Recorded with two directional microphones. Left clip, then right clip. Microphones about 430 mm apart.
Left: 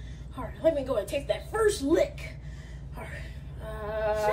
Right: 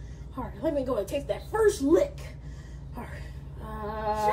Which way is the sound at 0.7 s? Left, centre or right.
Centre.